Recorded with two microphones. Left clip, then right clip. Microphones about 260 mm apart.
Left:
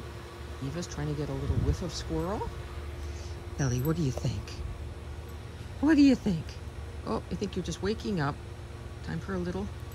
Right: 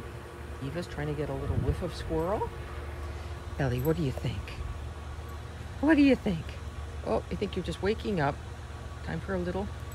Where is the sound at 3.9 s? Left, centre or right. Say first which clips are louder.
Right 3 dB; centre.